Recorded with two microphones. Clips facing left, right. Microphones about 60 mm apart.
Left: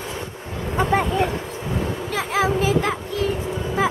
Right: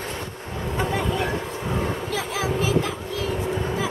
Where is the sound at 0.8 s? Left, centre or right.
Left.